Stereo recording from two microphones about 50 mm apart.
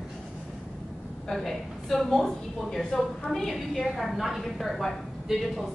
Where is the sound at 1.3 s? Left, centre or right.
Centre.